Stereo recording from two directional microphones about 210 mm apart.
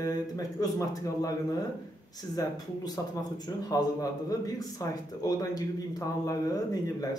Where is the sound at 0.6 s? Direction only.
15° left (ahead or behind).